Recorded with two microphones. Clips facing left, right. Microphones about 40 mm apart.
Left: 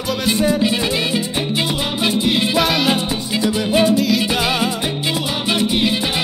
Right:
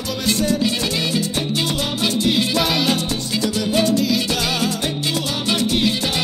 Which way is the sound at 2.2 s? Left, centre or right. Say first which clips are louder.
Left 1 dB; centre.